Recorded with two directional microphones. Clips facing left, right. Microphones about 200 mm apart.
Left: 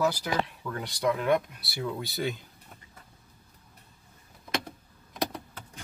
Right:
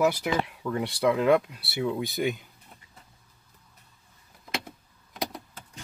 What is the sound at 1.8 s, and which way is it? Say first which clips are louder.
Speech: right 4 dB; 15° right (ahead or behind).